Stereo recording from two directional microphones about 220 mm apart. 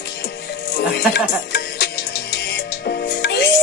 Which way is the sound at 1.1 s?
50° left (ahead or behind).